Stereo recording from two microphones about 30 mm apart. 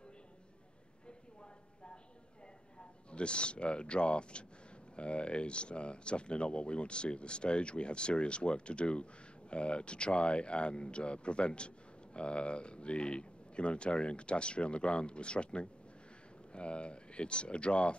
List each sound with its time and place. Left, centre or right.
2.8 s speech: left